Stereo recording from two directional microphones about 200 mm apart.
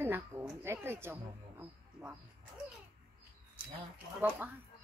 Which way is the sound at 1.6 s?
5° right (ahead or behind).